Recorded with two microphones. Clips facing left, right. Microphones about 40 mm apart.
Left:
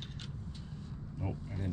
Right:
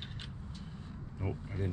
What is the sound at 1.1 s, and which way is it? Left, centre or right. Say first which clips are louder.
Vehicle: right 2 dB; centre.